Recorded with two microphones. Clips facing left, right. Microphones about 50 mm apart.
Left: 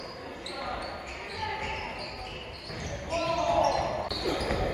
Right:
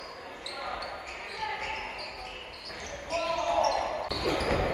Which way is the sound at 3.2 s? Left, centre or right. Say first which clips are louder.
Left 2 dB; right.